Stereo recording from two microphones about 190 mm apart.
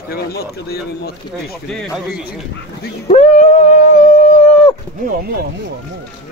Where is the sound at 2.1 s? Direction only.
55° left (ahead or behind).